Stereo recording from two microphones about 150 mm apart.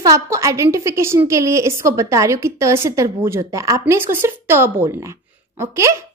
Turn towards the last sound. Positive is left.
turn(degrees=-20)  # may be behind; listen again after turning